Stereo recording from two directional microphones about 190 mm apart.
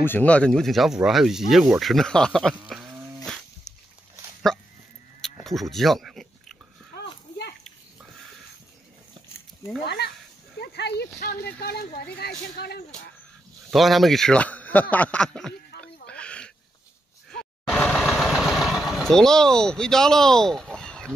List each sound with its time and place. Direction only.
0.0 s speech: 10° left (ahead or behind)
2.7 s livestock: 5° right (ahead or behind)
4.5 s dog: 5° left (ahead or behind)
5.2 s speech: centre (ahead or behind)
9.8 s speech: 60° left (ahead or behind)
13.7 s speech: centre (ahead or behind)
15.7 s a sound: 60° left (ahead or behind)
16.1 s a sound: 5° left (ahead or behind)
17.4 s vehicle: centre (ahead or behind)